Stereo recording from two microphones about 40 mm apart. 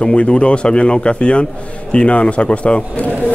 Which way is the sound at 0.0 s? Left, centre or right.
Left.